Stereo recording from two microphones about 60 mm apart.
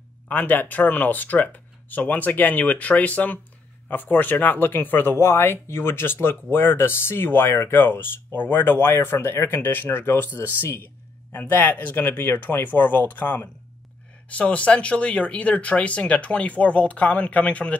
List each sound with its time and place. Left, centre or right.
0.3 s speech: left